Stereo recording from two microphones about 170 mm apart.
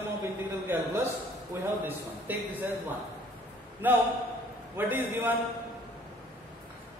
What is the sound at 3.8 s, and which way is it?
A man's voice, 10° right (ahead or behind).